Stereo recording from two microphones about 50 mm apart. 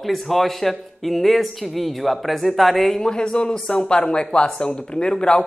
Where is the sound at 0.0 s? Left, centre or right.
Centre.